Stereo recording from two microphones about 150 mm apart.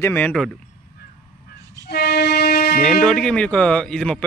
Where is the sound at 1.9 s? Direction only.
90° left.